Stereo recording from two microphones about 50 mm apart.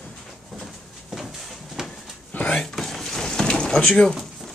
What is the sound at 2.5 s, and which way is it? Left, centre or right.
Drawer open or close, centre.